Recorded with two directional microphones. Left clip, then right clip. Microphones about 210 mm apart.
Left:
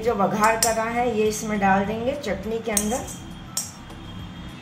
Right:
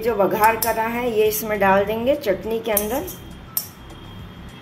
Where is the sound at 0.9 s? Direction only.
45° right (ahead or behind).